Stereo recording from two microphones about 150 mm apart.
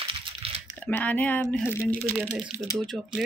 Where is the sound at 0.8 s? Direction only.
10° left (ahead or behind).